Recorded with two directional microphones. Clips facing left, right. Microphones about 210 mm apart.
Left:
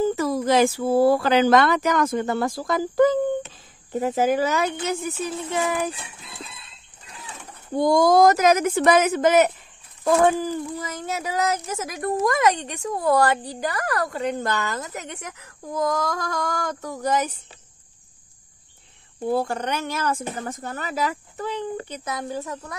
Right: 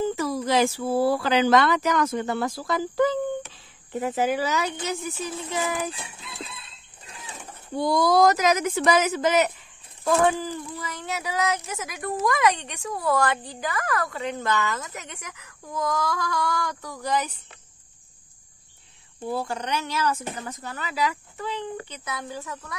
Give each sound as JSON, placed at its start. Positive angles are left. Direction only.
{"t": 0.0, "sound": "speech", "side_deg": 50}
{"t": 7.7, "sound": "speech", "side_deg": 45}
{"t": 19.2, "sound": "speech", "side_deg": 55}